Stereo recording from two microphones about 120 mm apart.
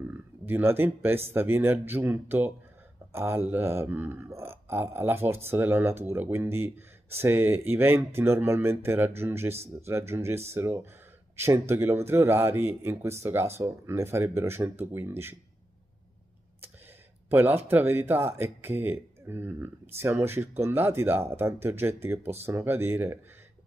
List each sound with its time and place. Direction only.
0.5 s speech: 15° right (ahead or behind)
17.3 s speech: 15° right (ahead or behind)